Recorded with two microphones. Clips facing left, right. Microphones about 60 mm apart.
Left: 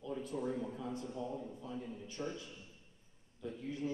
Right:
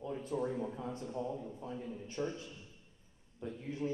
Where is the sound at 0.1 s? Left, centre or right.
Right.